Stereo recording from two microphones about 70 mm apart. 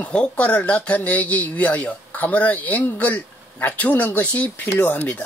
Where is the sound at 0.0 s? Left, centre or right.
Centre.